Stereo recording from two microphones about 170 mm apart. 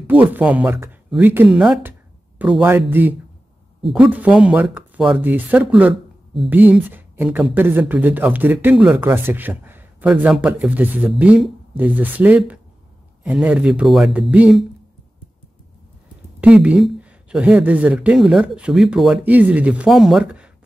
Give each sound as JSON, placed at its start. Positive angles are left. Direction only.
{"t": 0.0, "sound": "speech", "side_deg": -10}
{"t": 16.3, "sound": "speech", "side_deg": -10}